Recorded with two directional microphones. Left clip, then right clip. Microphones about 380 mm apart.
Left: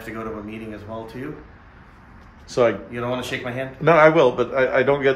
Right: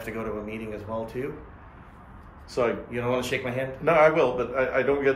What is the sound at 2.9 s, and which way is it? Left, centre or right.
Speech, centre.